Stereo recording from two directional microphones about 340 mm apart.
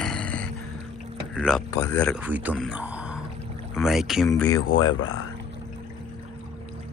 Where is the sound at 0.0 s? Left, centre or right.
Centre.